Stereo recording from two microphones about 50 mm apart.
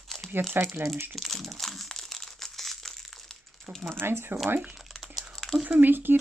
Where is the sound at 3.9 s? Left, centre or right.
Right.